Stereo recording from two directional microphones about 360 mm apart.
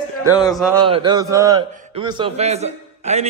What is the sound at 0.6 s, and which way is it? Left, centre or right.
A man's voice, centre.